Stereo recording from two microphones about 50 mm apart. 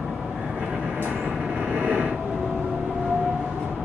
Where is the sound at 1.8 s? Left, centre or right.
Right.